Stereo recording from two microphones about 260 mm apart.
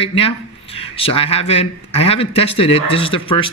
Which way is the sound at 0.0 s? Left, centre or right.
Left.